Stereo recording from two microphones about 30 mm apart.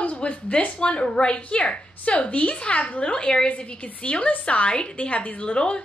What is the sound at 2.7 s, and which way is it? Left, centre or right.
Speech, left.